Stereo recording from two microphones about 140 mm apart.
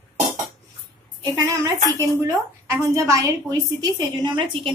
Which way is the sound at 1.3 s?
25° right (ahead or behind).